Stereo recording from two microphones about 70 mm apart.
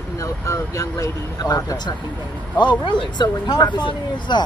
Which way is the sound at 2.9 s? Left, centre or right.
Left.